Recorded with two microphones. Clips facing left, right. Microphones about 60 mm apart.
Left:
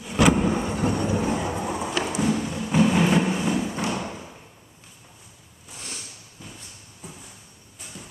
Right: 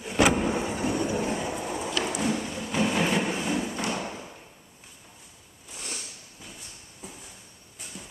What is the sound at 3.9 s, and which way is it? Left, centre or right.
Thump, centre.